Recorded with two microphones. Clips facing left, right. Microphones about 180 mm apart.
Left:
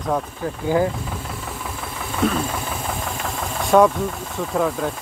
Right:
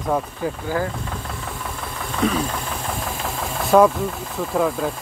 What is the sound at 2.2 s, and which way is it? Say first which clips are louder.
Engine: even; centre (ahead or behind).